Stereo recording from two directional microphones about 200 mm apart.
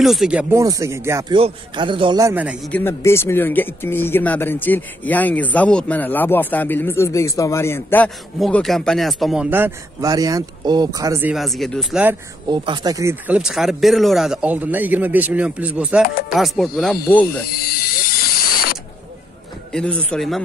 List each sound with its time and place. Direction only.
0.0 s speech: centre (ahead or behind)
1.3 s a man's voice: 25° right (ahead or behind); by 2.7 s 5° right (ahead or behind)
2.7 s speech: 10° left (ahead or behind); by 12.2 s 5° right (ahead or behind)
12.4 s speech: 20° right (ahead or behind); by 17.4 s 5° left (ahead or behind)
19.7 s speech: 5° left (ahead or behind)